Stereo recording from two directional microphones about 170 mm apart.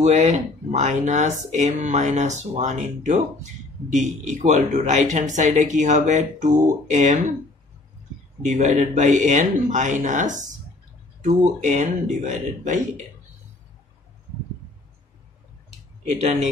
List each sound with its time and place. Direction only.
0.0 s speech: 40° right (ahead or behind)
8.4 s speech: 45° right (ahead or behind)
16.1 s speech: 40° right (ahead or behind)